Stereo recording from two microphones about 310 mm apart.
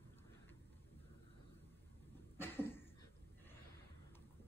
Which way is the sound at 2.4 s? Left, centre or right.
Centre.